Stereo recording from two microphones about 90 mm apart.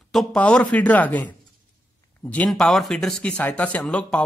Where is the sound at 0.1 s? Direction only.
5° left (ahead or behind).